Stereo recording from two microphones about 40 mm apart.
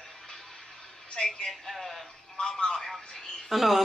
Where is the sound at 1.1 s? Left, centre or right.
Centre.